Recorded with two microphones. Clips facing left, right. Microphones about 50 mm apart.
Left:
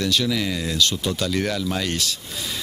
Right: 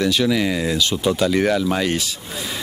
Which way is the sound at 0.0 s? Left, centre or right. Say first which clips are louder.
Right 4 dB; centre.